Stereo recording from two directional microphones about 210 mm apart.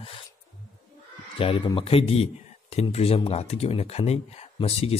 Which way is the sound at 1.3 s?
25° left (ahead or behind).